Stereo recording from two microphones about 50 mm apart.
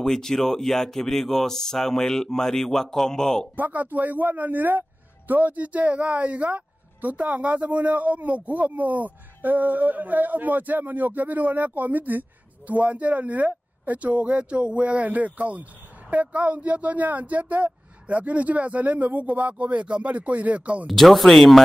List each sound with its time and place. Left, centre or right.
0.0 s speech: centre
3.5 s speech: right
20.9 s speech: centre